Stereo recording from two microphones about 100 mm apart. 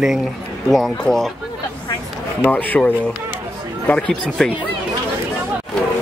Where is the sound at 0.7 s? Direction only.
Centre (ahead or behind).